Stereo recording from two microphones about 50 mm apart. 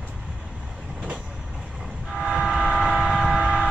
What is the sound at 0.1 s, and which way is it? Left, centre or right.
Vehicle, centre.